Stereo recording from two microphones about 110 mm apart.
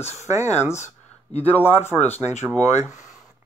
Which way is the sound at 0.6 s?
25° left (ahead or behind).